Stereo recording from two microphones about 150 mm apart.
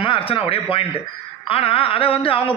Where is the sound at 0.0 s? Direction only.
35° left (ahead or behind).